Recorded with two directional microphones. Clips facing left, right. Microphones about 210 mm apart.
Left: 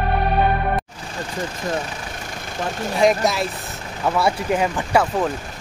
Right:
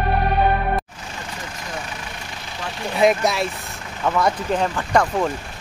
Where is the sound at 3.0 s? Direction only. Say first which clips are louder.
Even; centre (ahead or behind).